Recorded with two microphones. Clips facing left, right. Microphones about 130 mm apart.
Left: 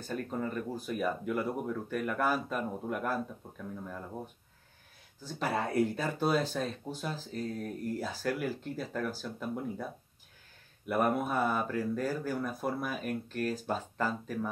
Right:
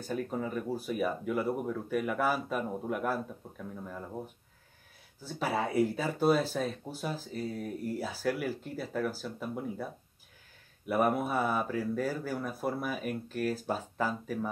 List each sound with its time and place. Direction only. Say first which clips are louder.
0.0 s speech: right 1 dB; 10° right (ahead or behind)
5.2 s speech: right 1 dB; 5° right (ahead or behind)
10.9 s speech: right 1 dB; 5° right (ahead or behind)